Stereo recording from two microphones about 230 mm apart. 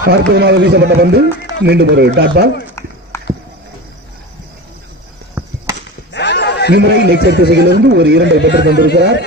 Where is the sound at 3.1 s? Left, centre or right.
Centre.